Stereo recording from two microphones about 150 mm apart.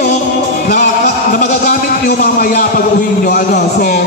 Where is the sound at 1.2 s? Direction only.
60° left (ahead or behind).